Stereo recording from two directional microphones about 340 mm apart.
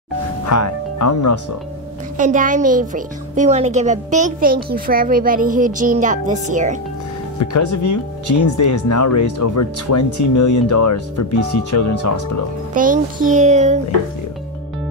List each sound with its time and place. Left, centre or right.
0.5 s speech: left
2.1 s a child's voice: right
7.5 s speech: left
12.7 s a child's voice: right